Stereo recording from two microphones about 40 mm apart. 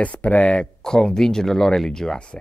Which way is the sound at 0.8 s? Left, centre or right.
Centre.